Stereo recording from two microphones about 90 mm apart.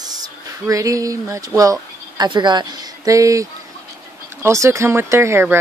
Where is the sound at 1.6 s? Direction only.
40° right (ahead or behind).